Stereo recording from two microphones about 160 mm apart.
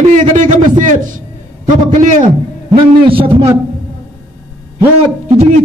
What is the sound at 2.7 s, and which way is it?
Speech, 35° right (ahead or behind).